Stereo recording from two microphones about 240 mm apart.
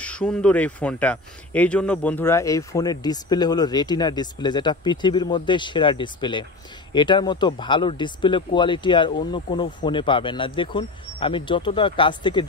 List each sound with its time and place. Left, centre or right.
0.0 s speech: centre